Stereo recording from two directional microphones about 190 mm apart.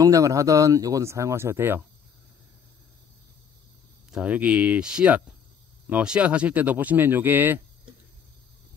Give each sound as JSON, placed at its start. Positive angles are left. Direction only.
{"t": 0.0, "sound": "speech", "side_deg": -15}
{"t": 4.1, "sound": "speech", "side_deg": -5}